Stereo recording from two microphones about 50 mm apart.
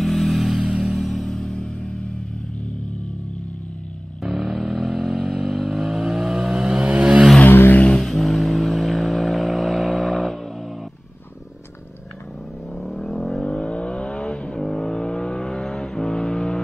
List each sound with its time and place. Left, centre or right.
0.0 s vehicle: centre
0.8 s music: centre
1.3 s music: centre
4.2 s vehicle: centre; by 7.2 s right
7.4 s vehicle: left
7.9 s vehicle: centre
12.7 s vehicle: centre